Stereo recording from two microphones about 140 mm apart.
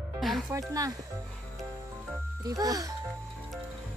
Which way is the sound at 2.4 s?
25° right (ahead or behind).